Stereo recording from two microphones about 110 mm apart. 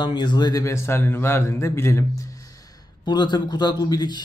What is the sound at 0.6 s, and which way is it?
Speech, 25° left (ahead or behind).